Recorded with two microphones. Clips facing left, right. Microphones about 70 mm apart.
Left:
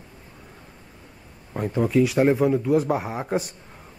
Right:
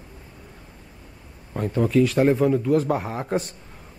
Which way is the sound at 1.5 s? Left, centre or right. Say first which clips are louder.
Right 1 dB; centre.